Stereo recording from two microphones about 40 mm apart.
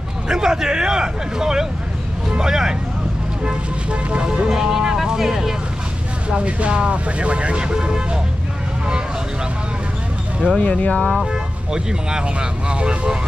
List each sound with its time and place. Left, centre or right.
0.3 s speech: centre
4.5 s speech: centre
6.3 s speech: right
10.6 s speech: left
11.7 s speech: right